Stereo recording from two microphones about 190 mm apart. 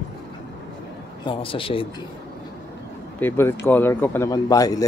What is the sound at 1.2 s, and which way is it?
Speech, 30° left (ahead or behind).